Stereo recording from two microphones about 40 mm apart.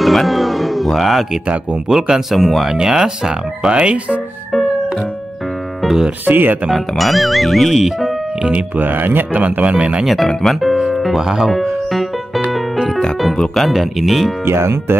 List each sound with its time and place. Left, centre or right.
0.0 s music: centre
1.9 s speech: centre
3.7 s speech: right
5.8 s music: centre
6.2 s speech: right
6.7 s speech: centre
8.5 s speech: right
9.7 s speech: right
10.2 s speech: centre
11.9 s music: centre
13.7 s speech: centre
14.4 s speech: right